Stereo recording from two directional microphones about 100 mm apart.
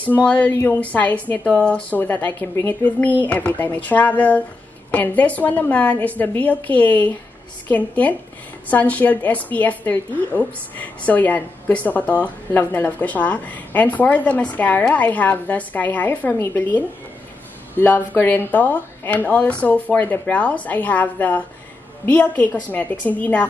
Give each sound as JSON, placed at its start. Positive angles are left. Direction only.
{"t": 0.1, "sound": "a woman's voice", "side_deg": 15}